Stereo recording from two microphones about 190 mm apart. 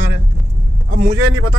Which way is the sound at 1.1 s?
90° right.